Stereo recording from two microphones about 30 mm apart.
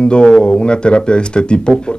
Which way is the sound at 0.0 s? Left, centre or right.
Left.